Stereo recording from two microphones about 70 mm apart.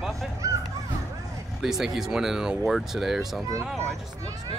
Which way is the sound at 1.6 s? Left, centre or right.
Centre.